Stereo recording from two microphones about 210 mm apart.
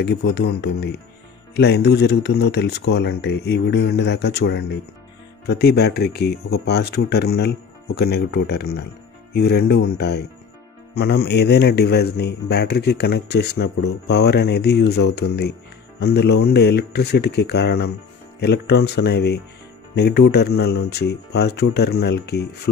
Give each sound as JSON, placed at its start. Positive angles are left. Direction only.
{"t": 0.0, "sound": "a man's voice", "side_deg": 55}